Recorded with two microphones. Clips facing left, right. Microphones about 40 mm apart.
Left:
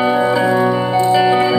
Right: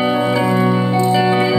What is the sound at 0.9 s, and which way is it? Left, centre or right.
Music, left.